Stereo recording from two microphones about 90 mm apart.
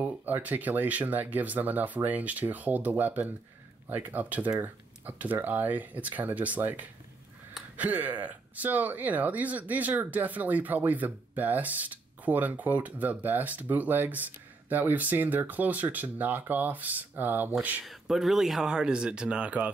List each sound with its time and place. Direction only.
0.0 s speech: 20° right (ahead or behind)
17.8 s speech: 5° right (ahead or behind)